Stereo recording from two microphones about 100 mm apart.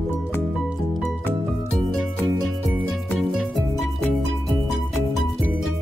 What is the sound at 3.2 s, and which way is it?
Music, centre (ahead or behind).